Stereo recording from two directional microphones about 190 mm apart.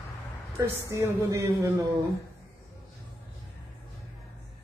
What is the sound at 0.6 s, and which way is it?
Speech, 15° right (ahead or behind).